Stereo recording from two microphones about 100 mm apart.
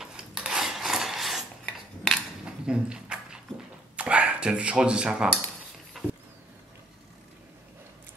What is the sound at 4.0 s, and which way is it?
Speech, 15° right (ahead or behind).